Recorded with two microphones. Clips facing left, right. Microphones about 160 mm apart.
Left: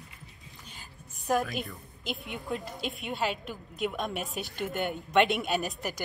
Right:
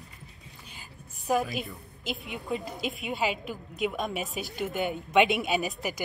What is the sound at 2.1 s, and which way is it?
A woman's voice, centre (ahead or behind).